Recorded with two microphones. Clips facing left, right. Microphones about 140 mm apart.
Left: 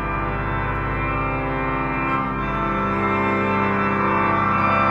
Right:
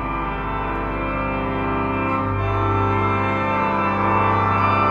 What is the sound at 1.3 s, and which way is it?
Organ, 15° right (ahead or behind).